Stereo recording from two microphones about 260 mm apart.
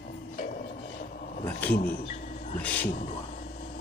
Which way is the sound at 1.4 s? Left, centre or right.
Centre.